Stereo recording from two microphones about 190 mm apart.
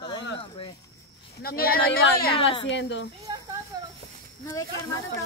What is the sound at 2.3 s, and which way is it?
Speech, 30° left (ahead or behind).